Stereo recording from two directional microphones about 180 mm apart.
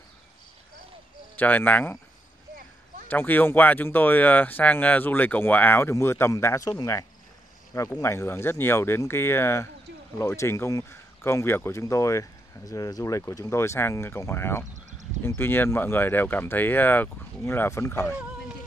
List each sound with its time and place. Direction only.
1.3 s speech: 10° left (ahead or behind)
3.1 s speech: 10° left (ahead or behind)